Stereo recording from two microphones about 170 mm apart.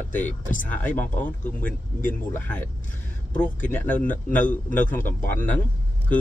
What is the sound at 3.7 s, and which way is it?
A man's voice, 10° left (ahead or behind).